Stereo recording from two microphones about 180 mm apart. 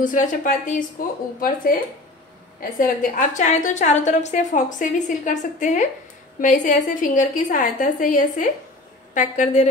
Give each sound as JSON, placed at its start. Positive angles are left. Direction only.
{"t": 0.0, "sound": "a woman's voice", "side_deg": 45}
{"t": 2.8, "sound": "a woman's voice", "side_deg": 45}